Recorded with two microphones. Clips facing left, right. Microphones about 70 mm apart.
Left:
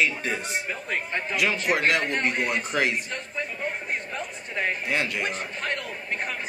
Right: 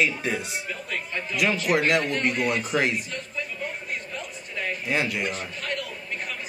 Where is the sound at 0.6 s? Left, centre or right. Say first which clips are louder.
Left 2 dB; left.